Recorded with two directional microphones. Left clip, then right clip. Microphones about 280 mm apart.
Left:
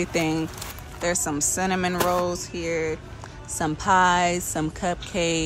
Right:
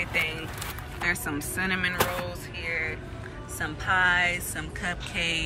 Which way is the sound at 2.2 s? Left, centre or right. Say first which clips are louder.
Left 6 dB; left.